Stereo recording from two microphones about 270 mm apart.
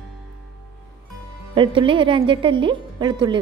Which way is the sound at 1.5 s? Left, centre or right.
Centre.